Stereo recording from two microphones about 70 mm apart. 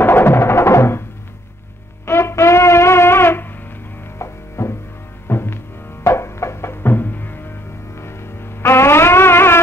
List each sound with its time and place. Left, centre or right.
0.0 s music: left
2.0 s wind instrument: left
4.2 s music: left